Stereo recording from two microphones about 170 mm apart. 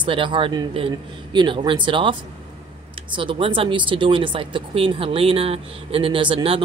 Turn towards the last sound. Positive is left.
turn(degrees=-30)  # may be behind; listen again after turning